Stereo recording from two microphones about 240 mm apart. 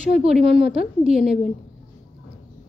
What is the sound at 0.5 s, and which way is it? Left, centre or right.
Speech, right.